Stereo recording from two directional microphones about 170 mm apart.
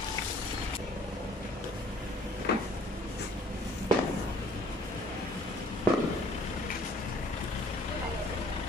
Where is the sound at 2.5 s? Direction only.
75° left (ahead or behind).